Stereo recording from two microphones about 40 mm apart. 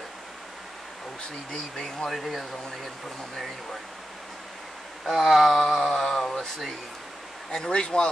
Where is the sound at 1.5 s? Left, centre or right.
Centre.